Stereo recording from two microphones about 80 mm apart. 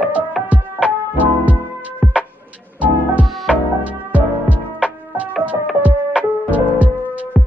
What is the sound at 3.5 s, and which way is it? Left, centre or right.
Music, centre.